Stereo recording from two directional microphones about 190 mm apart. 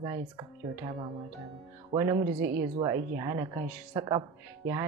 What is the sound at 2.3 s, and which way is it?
Speech, 60° right (ahead or behind).